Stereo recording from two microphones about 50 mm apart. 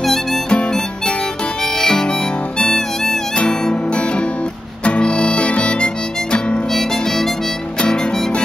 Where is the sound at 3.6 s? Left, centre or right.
Centre.